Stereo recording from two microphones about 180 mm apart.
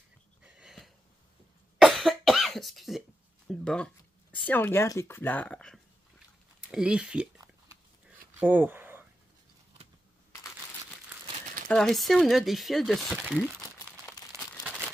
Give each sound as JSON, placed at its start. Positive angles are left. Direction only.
{"t": 0.6, "sound": "sniff", "side_deg": 0}
{"t": 1.8, "sound": "cough", "side_deg": 0}
{"t": 3.4, "sound": "speech", "side_deg": 5}
{"t": 6.7, "sound": "speech", "side_deg": -5}
{"t": 8.4, "sound": "a sound", "side_deg": -10}
{"t": 11.7, "sound": "speech", "side_deg": 0}
{"t": 13.4, "sound": "crumpling", "side_deg": 15}